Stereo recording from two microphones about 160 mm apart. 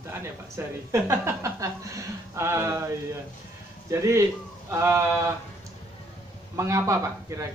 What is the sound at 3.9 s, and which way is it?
Speech, 15° right (ahead or behind).